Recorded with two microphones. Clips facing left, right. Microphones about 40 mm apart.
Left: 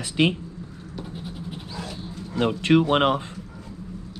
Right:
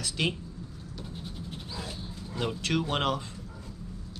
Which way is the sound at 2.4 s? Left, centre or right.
Left.